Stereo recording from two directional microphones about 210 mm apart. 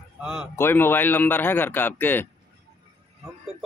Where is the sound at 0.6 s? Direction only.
10° left (ahead or behind).